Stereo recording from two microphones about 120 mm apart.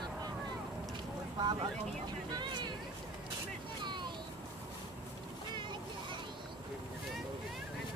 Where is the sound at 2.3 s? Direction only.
40° right (ahead or behind).